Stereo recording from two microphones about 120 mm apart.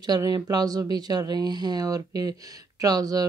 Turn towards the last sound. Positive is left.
turn(degrees=-30)  # may be behind; listen again after turning